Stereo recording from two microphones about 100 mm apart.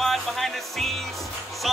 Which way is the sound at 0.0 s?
Centre (ahead or behind).